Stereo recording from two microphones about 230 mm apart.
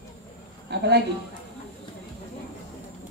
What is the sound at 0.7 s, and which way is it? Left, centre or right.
Speech, right.